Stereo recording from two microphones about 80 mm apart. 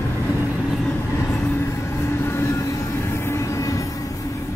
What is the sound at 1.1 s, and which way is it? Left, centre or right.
Train, left.